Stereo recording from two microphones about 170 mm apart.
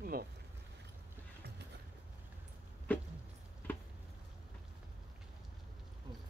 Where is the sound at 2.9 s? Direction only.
10° left (ahead or behind).